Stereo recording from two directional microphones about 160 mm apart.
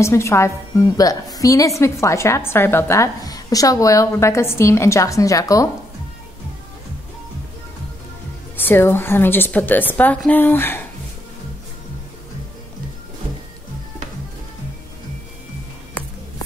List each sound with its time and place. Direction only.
0.0 s a woman's voice: 15° left (ahead or behind)
8.5 s a woman's voice: 15° left (ahead or behind)